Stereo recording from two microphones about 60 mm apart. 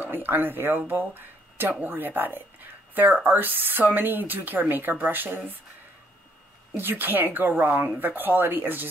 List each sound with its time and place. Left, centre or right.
0.0 s speech: right
6.8 s speech: right